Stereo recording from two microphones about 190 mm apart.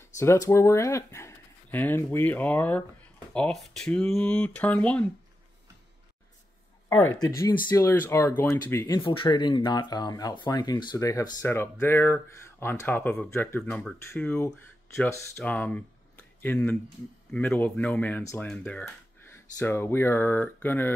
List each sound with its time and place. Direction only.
0.2 s speech: 15° left (ahead or behind)
7.0 s speech: 15° left (ahead or behind)
9.0 s speech: 25° left (ahead or behind); by 20.9 s 10° left (ahead or behind)